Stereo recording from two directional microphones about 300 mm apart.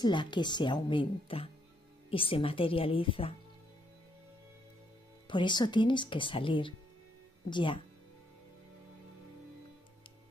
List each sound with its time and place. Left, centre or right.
0.0 s a woman's voice: centre
5.3 s a woman's voice: centre